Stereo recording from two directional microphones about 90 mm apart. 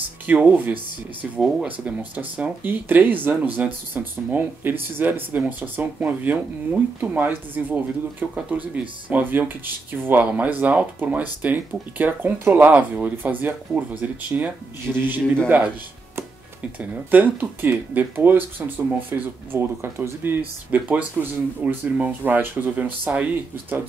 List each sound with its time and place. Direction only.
0.3 s speech: 15° right (ahead or behind)
17.1 s speech: 20° right (ahead or behind)